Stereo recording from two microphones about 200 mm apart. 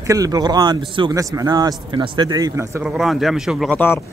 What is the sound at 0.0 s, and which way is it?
Speech, 15° right (ahead or behind).